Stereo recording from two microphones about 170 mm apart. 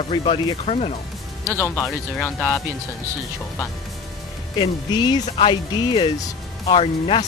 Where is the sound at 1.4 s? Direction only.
15° left (ahead or behind).